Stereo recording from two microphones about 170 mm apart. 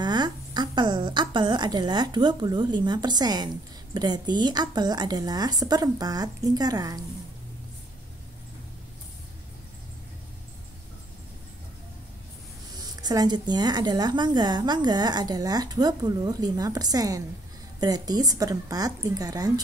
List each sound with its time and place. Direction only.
0.0 s speech: 25° right (ahead or behind)
12.7 s a woman's voice: 20° right (ahead or behind)